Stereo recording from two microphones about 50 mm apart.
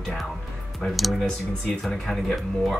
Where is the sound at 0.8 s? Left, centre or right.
Left.